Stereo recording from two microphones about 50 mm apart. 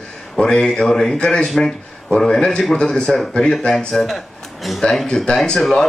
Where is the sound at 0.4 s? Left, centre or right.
Centre.